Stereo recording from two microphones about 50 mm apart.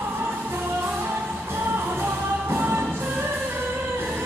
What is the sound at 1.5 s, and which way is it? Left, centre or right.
Music, right.